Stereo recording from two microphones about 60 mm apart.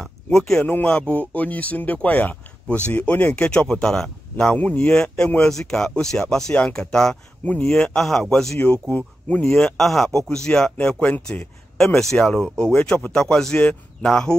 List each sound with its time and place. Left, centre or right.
0.0 s a sound: centre
0.8 s speech: centre
8.8 s speech: left
9.5 s speech: centre
11.0 s speech: left
11.8 s speech: centre